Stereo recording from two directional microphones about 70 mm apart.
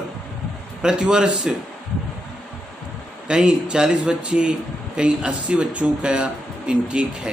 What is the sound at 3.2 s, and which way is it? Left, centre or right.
Speech, centre.